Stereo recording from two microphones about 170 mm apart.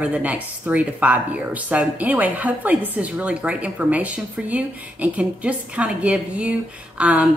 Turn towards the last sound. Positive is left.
turn(degrees=-5)  # may be behind; listen again after turning